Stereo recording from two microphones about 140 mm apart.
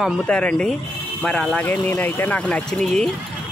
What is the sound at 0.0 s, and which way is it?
Speech, 10° left (ahead or behind).